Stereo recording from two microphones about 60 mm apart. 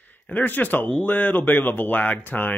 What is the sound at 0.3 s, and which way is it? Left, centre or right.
Speech, left.